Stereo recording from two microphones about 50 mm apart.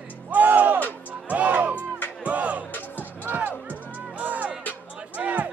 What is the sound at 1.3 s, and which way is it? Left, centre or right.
Crowd, right.